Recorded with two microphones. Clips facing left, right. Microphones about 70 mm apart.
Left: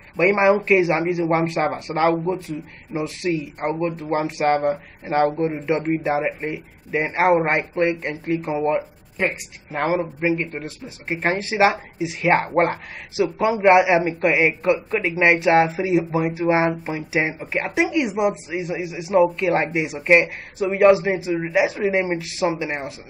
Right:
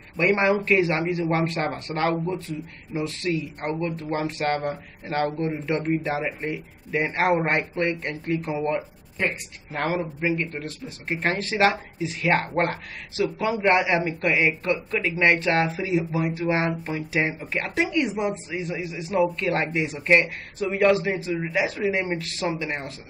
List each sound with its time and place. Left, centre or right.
0.2 s a man's voice: centre
2.9 s a man's voice: centre